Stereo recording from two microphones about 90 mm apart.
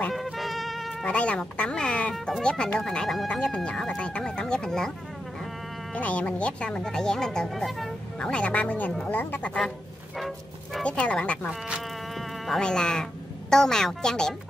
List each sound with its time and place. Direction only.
0.1 s music: centre (ahead or behind)
1.0 s speech: 15° left (ahead or behind)
5.9 s speech: 15° left (ahead or behind)
8.3 s speech: 15° left (ahead or behind)
10.1 s a sound: centre (ahead or behind)
10.8 s speech: 15° left (ahead or behind)